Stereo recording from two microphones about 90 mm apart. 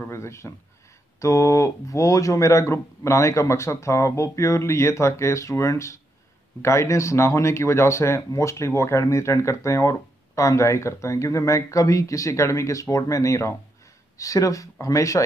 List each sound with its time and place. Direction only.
0.1 s speech: 30° left (ahead or behind)